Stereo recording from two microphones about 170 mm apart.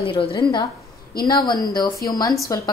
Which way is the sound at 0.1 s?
30° left (ahead or behind).